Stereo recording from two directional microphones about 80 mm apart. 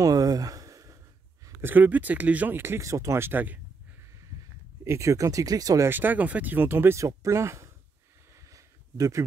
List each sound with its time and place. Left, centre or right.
0.0 s a sound: right
1.6 s speech: right
2.8 s speech: right
4.8 s speech: right
5.9 s speech: right
8.5 s a sound: right